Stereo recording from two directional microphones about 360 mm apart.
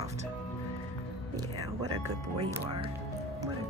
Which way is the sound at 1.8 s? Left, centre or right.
Right.